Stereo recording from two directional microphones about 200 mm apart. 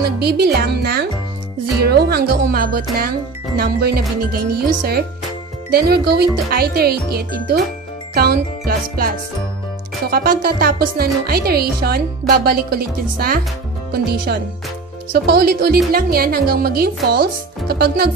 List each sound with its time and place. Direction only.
0.2 s speech: 50° right (ahead or behind)